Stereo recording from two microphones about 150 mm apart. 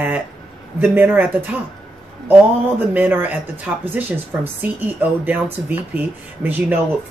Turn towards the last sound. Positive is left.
turn(degrees=-10)  # may be behind; listen again after turning